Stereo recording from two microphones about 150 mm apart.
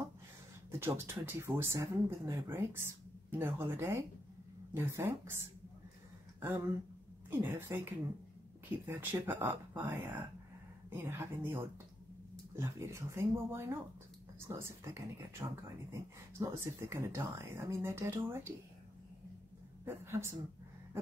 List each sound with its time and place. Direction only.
0.7 s speech: 15° right (ahead or behind)
7.2 s speech: 15° right (ahead or behind)
19.8 s speech: 15° right (ahead or behind)